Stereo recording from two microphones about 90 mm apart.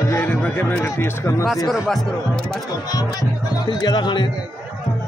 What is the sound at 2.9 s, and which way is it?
Speech, 45° left (ahead or behind).